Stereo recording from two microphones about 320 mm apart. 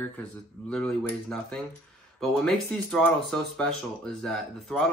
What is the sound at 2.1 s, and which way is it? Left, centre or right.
Speech, centre.